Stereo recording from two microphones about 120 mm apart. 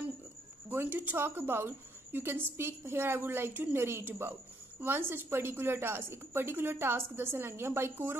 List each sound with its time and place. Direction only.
0.7 s a woman's voice: 15° right (ahead or behind)